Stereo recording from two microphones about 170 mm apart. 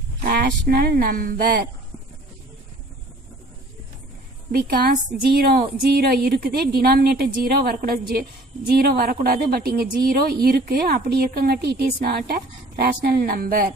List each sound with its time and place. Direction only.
0.3 s a woman's voice: 65° right (ahead or behind)
4.5 s a woman's voice: 60° right (ahead or behind)